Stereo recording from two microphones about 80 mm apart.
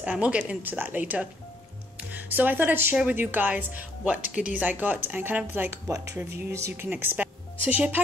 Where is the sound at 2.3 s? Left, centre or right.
Right.